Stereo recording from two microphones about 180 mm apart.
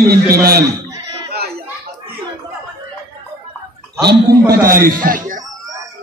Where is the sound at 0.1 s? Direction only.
60° right (ahead or behind).